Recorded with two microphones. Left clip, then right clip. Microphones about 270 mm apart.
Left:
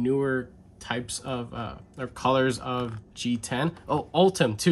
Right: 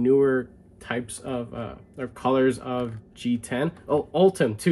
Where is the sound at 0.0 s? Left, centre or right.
Centre.